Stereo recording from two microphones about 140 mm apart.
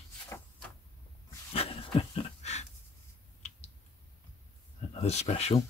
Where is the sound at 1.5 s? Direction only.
45° left (ahead or behind).